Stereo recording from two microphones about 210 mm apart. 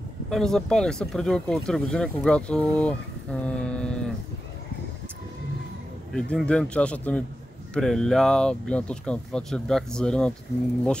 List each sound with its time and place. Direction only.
0.3 s speech: centre (ahead or behind)
6.1 s speech: 5° left (ahead or behind)